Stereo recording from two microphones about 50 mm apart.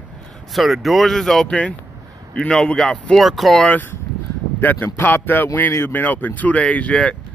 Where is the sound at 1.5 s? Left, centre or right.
Left.